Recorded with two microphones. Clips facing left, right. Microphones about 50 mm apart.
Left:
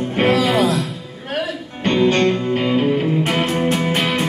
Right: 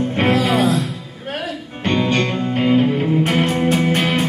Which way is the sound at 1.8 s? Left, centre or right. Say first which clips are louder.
Left 3 dB; centre.